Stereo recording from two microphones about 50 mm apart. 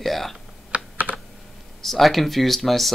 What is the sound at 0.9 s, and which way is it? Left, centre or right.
Computer keyboard, right.